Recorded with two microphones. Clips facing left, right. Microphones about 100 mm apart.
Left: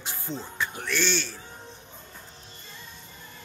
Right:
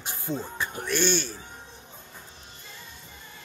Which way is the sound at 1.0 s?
50° right (ahead or behind).